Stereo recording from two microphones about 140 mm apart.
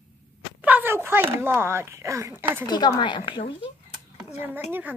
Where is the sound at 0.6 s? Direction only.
15° right (ahead or behind).